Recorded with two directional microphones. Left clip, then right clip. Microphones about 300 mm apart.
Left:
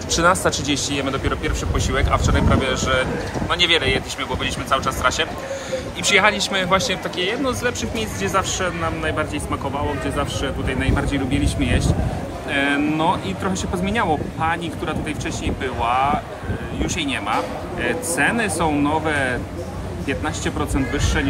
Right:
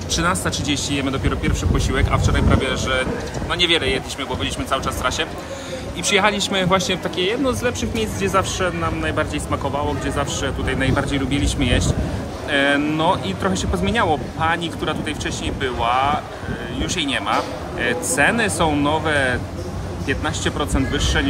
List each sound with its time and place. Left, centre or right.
0.1 s speech: centre